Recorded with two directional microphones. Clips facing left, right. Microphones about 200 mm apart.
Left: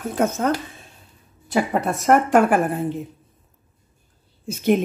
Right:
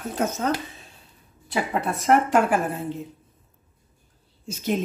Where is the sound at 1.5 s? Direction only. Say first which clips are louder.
Left 5 dB; 45° left (ahead or behind).